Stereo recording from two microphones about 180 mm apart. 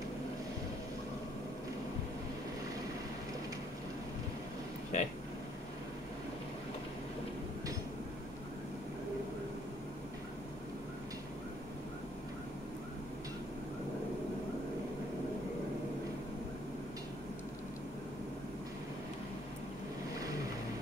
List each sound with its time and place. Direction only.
4.9 s speech: 40° left (ahead or behind)